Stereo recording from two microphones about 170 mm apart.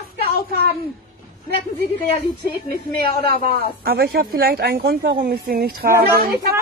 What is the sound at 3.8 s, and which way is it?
Speech, 65° right (ahead or behind).